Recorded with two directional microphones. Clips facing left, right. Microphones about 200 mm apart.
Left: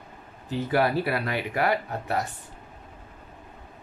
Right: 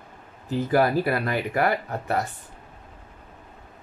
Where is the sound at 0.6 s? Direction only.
45° right (ahead or behind).